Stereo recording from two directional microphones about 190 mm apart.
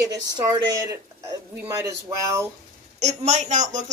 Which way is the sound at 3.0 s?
35° right (ahead or behind).